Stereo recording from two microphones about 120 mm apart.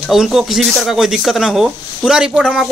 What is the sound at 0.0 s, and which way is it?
Speech, centre (ahead or behind).